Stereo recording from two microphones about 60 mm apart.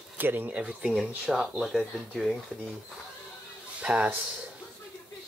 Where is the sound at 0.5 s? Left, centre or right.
Centre.